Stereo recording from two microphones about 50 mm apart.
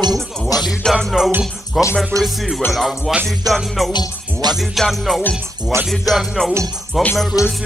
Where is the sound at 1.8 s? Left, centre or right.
Centre.